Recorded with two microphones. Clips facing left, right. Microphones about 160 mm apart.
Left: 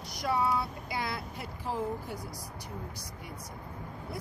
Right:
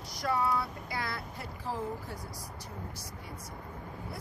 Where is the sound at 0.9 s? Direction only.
20° left (ahead or behind).